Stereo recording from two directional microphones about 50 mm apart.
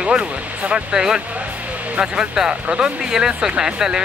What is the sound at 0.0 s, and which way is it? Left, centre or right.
Speech, centre.